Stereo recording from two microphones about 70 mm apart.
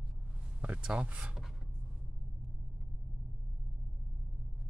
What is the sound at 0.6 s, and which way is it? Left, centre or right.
Speech, centre.